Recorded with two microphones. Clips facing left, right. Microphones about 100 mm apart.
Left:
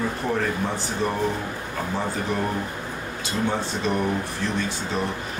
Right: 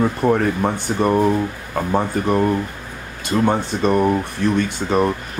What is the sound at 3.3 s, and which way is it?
Speech, 55° right (ahead or behind).